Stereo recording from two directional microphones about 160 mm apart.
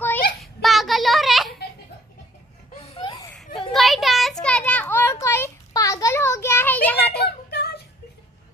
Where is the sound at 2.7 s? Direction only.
40° left (ahead or behind).